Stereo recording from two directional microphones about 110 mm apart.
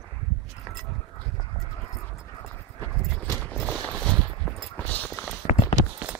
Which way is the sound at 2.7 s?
25° left (ahead or behind).